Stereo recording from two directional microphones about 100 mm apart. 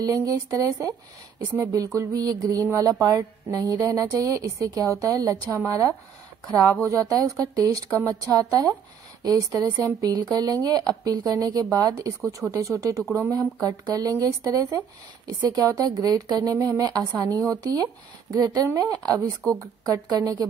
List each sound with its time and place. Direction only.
0.0 s music: 35° right (ahead or behind)